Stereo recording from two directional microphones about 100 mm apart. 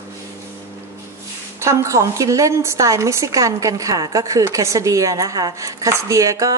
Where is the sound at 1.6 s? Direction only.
30° right (ahead or behind).